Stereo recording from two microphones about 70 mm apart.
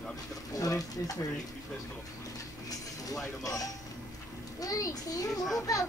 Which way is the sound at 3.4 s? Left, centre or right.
Left.